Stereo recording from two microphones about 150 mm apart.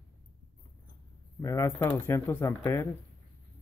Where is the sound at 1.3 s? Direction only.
20° left (ahead or behind).